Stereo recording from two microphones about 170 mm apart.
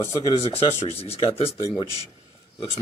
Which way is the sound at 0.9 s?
35° left (ahead or behind).